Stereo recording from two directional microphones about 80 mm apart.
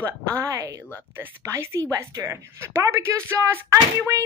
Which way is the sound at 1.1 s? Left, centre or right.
Right.